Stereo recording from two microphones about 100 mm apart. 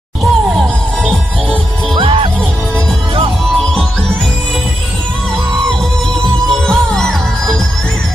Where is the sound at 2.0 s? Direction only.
65° right (ahead or behind).